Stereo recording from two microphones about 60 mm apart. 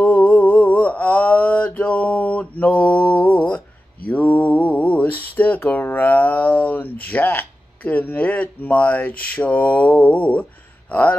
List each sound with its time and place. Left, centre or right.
0.0 s mantra: left
10.9 s speech: left